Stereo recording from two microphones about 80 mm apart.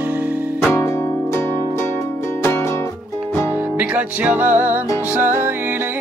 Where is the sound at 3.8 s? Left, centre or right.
Centre.